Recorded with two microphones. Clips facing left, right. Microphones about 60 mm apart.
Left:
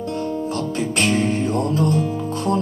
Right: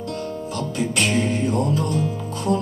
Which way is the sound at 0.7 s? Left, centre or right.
Left.